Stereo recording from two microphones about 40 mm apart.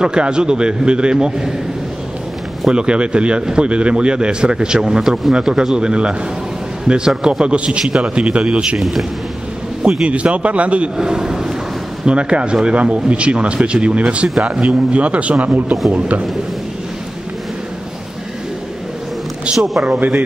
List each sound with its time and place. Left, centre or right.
0.0 s speech: right
2.7 s speech: right
5.0 s speech: centre
5.8 s speech: right
8.7 s a man's voice: centre
10.0 s speech: right
11.0 s a sound: centre
12.1 s speech: right
19.5 s speech: centre
20.0 s a man's voice: right